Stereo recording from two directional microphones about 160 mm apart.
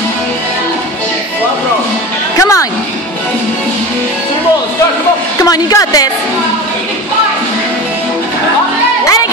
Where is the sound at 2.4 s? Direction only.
20° left (ahead or behind).